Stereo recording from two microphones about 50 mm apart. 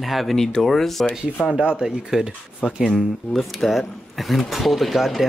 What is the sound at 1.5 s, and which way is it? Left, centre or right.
Speech, centre.